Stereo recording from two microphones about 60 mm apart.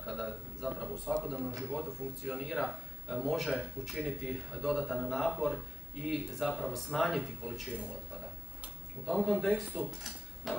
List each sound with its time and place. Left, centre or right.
0.0 s a man's voice: centre
9.0 s a man's voice: centre
9.8 s dishes: centre